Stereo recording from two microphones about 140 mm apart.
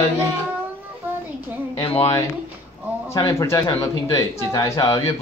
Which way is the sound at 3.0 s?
20° left (ahead or behind).